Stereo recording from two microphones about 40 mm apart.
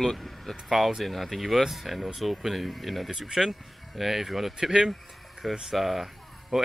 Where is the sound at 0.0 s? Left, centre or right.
Centre.